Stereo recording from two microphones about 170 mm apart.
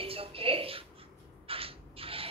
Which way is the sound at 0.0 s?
35° right (ahead or behind).